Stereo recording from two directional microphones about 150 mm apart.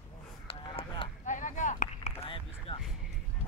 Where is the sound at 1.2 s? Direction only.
55° left (ahead or behind).